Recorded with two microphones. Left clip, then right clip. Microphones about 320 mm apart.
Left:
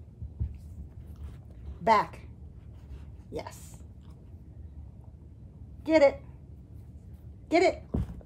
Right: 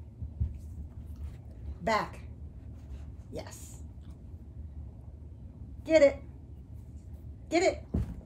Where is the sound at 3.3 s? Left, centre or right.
Left.